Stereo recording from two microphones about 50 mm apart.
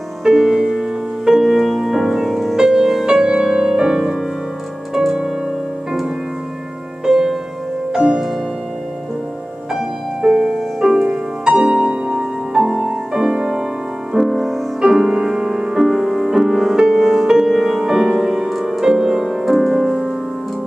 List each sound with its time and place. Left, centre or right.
0.2 s music: centre
2.5 s music: centre
5.9 s music: centre
9.8 s music: centre
11.0 s music: right; by 14.6 s centre
14.8 s music: centre